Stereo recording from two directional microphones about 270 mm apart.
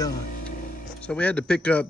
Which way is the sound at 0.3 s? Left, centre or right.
Left.